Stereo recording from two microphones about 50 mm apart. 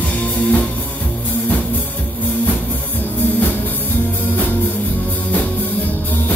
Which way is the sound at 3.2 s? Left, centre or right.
Left.